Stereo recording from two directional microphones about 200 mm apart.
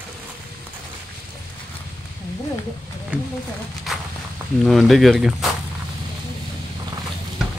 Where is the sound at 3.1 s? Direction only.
10° right (ahead or behind).